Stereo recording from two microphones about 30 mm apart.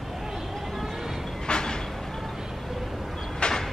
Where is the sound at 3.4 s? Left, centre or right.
Left.